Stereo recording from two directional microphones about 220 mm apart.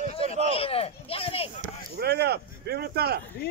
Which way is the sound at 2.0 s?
50° right (ahead or behind).